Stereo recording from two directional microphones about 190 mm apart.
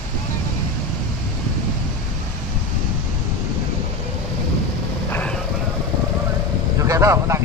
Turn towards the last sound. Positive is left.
turn(degrees=-15)  # may be behind; listen again after turning